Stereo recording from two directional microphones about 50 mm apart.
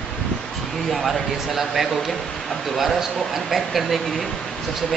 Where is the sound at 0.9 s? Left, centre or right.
Centre.